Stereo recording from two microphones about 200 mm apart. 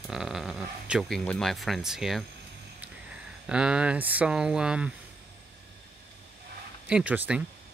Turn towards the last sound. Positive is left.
turn(degrees=-5)  # may be behind; listen again after turning